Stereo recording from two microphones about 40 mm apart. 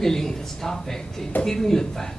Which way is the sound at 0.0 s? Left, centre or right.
Centre.